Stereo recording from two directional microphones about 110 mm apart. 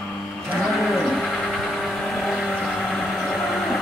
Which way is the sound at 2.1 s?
Centre (ahead or behind).